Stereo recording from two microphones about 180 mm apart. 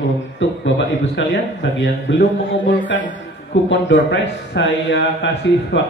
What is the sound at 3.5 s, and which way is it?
A man's voice, 90° left.